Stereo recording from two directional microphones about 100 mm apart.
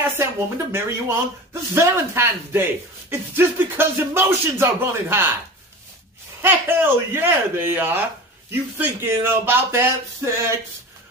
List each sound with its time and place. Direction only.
0.2 s speech: 25° right (ahead or behind)
6.4 s speech: 20° right (ahead or behind)